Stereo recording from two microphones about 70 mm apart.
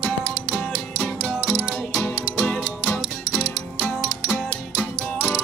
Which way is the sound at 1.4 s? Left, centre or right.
Centre.